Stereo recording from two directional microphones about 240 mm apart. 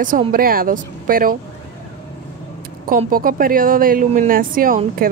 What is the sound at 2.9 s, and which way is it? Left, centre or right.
Speech, right.